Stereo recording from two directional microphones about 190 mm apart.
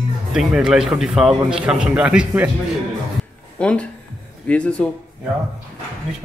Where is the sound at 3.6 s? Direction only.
5° left (ahead or behind).